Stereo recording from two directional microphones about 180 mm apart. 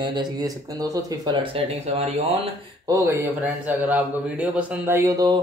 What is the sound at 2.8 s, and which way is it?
Speech, 20° right (ahead or behind).